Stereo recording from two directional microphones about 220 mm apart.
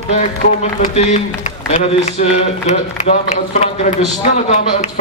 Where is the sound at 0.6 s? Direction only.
30° left (ahead or behind).